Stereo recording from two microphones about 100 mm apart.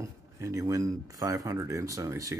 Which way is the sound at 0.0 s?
30° right (ahead or behind).